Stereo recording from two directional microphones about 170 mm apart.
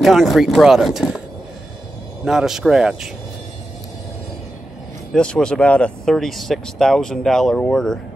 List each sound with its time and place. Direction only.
0.0 s speech: centre (ahead or behind)
2.2 s speech: 5° right (ahead or behind)
5.1 s speech: 5° left (ahead or behind)